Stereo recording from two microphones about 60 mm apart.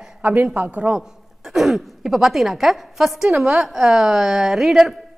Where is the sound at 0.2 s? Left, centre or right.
Right.